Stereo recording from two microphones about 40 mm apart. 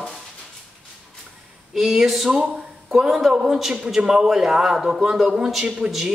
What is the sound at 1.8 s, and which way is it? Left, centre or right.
A woman's voice, centre.